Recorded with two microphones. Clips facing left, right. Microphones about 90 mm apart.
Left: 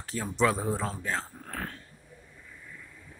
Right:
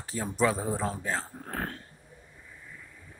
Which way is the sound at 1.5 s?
40° right (ahead or behind).